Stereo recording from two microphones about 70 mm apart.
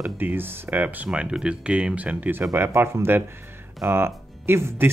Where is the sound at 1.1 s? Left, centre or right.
Centre.